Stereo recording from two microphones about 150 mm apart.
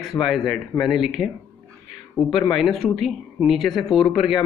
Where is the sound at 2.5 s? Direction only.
Centre (ahead or behind).